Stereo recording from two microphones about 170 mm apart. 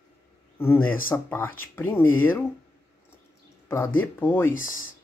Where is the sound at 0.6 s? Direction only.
15° left (ahead or behind).